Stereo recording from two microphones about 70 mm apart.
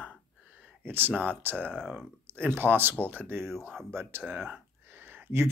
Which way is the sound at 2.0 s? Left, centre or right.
Right.